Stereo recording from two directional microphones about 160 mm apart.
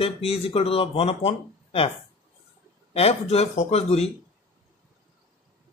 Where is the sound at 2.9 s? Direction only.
40° left (ahead or behind).